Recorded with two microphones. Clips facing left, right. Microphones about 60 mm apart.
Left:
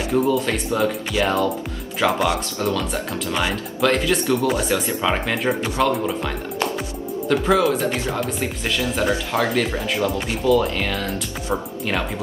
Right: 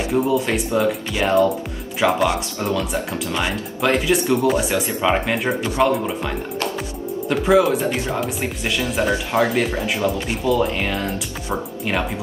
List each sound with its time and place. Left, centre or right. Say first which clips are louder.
0.1 s speech: even; centre
7.2 s speech: right 2 dB; centre
10.0 s speech: left 1 dB; centre